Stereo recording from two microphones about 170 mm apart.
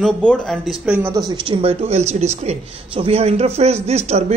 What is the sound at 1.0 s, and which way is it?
Speech, 20° right (ahead or behind).